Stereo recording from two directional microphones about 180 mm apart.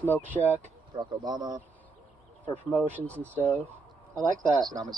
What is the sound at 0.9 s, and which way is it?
Speech, 25° right (ahead or behind).